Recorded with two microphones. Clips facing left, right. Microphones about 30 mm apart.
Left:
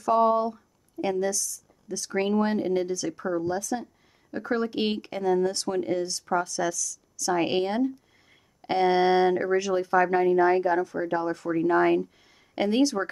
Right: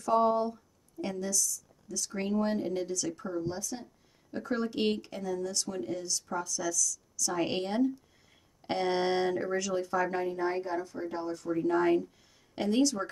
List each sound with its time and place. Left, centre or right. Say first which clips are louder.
0.0 s speech: left 5 dB; centre; by 2.5 s left
2.5 s speech: left 6 dB; left
3.4 s speech: left 8 dB; left
4.3 s speech: left 5 dB; left
10.3 s speech: left 11 dB; left
11.4 s speech: left 4 dB; left